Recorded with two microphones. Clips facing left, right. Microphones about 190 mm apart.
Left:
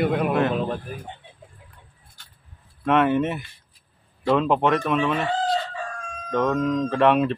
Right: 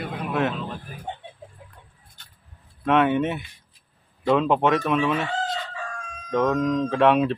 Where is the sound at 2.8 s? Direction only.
Centre (ahead or behind).